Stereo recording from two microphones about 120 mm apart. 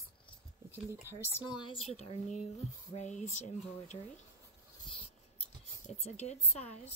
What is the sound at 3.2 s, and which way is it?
Speech, 75° left (ahead or behind).